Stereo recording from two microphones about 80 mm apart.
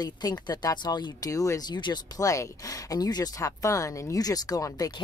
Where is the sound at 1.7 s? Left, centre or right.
Left.